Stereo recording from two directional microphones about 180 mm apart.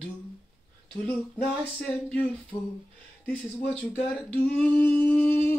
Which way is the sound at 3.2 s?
5° left (ahead or behind).